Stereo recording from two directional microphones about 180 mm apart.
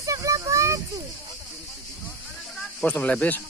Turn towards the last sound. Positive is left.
turn(degrees=10)  # may be behind; listen again after turning